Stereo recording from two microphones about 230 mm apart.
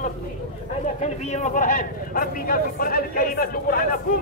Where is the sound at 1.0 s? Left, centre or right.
Left.